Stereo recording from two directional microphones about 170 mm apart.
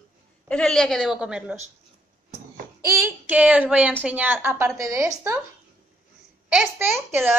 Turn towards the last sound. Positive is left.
turn(degrees=-5)  # may be behind; listen again after turning